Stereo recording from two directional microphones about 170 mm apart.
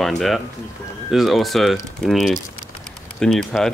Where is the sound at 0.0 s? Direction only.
Centre (ahead or behind).